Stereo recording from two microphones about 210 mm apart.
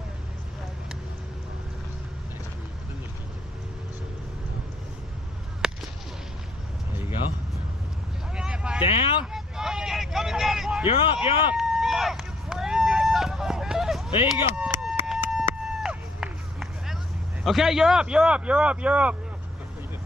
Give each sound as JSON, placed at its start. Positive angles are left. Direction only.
{"t": 5.6, "sound": "whip", "side_deg": 0}
{"t": 8.4, "sound": "vehicle", "side_deg": -5}
{"t": 8.8, "sound": "vehicle", "side_deg": 25}
{"t": 9.2, "sound": "vehicle", "side_deg": 0}
{"t": 10.9, "sound": "speech", "side_deg": 25}
{"t": 11.5, "sound": "run", "side_deg": 0}
{"t": 17.4, "sound": "speech", "side_deg": 0}